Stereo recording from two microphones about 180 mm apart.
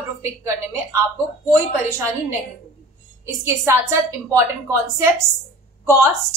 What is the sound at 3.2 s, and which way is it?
A woman's voice, 15° right (ahead or behind).